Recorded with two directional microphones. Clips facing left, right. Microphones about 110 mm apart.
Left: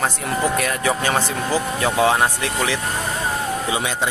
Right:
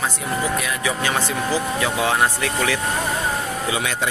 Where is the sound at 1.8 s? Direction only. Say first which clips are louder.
Left 4 dB; 25° left (ahead or behind).